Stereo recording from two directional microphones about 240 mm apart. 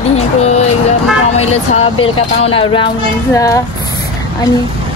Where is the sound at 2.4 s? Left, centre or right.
Left.